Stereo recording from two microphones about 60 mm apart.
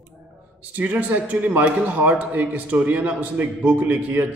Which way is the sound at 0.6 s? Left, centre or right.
Right.